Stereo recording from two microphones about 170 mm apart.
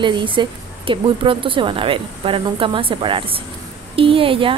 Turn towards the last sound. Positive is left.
turn(degrees=-30)  # may be behind; listen again after turning